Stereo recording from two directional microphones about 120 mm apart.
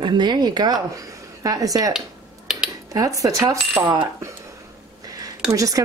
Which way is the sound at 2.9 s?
30° right (ahead or behind).